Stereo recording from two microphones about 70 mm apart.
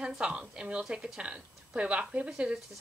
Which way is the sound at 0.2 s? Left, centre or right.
Centre.